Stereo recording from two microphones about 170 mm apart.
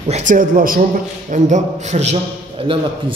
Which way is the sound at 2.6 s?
30° right (ahead or behind).